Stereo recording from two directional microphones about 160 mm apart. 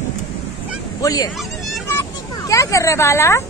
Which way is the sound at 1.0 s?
25° left (ahead or behind).